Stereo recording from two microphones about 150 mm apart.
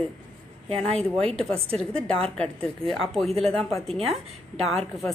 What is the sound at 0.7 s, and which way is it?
A woman's voice, 5° left (ahead or behind).